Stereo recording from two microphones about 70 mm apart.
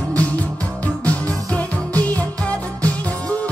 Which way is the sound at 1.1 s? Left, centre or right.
Left.